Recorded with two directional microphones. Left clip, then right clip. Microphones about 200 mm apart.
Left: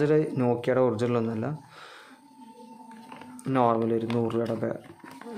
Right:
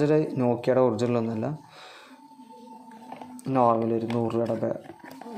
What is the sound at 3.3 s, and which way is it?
Speech, 5° left (ahead or behind).